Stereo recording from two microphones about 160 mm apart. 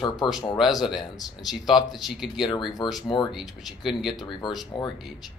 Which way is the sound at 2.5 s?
30° left (ahead or behind).